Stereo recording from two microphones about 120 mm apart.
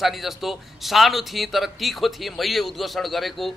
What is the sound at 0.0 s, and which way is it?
A man's voice, centre (ahead or behind).